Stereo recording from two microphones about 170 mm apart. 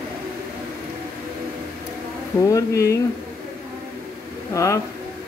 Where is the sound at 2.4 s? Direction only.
20° left (ahead or behind).